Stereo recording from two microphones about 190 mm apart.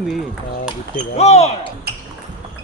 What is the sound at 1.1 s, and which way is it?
Speech, 35° left (ahead or behind).